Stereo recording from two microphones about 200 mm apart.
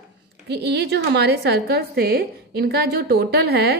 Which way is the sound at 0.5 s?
55° right (ahead or behind).